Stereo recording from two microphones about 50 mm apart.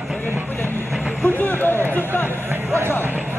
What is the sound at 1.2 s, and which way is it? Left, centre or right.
Vehicle, left.